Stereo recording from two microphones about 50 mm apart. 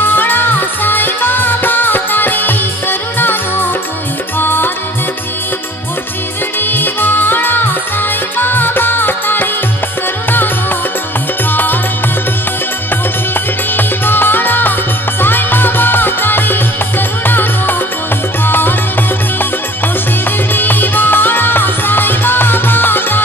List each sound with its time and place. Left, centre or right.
0.0 s music: left
4.4 s music: left
6.6 s music: left
13.3 s music: left
20.5 s music: left